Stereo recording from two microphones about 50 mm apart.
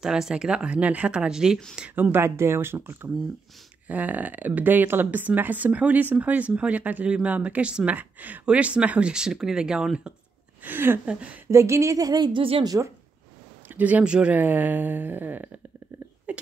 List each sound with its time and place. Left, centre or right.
0.0 s speech: centre
2.0 s speech: right
2.2 s speech: right
3.8 s speech: right
8.5 s speech: right
9.1 s speech: centre
10.6 s speech: right
11.5 s speech: right
12.7 s speech: right
13.7 s speech: right
14.0 s speech: right
14.3 s speech: right
16.3 s a sound: right